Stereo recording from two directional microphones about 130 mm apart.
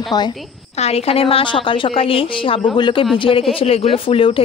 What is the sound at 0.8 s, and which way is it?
A woman's voice, 55° left (ahead or behind).